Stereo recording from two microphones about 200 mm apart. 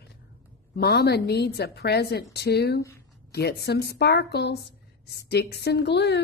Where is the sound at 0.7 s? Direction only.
55° left (ahead or behind).